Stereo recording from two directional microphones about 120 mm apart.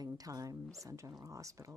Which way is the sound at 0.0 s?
30° right (ahead or behind).